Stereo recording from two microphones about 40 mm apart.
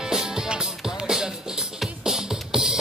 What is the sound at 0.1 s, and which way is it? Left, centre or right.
Music, centre.